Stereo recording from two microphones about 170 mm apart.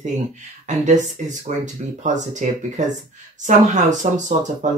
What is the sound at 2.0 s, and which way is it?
Speech, 45° right (ahead or behind).